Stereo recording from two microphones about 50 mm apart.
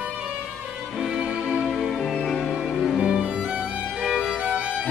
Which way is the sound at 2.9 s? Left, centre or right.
Right.